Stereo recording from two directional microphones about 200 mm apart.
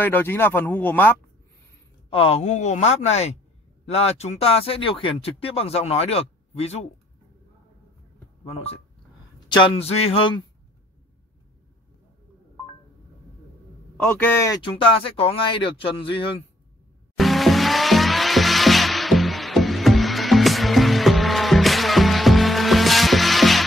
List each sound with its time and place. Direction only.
0.0 s speech: 10° left (ahead or behind)
2.0 s speech: 30° left (ahead or behind)
8.5 s speech: 30° left (ahead or behind)
13.9 s speech: 10° left (ahead or behind)
14.6 s speech: 25° left (ahead or behind)
17.2 s music: centre (ahead or behind)